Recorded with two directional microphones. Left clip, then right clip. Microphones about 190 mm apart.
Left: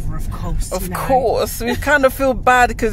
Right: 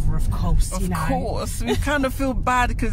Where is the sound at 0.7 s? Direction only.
25° left (ahead or behind).